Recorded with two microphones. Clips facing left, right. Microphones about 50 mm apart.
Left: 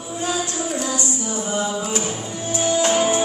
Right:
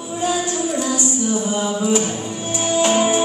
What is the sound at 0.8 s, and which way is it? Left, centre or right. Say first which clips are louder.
Music: right 4 dB; centre.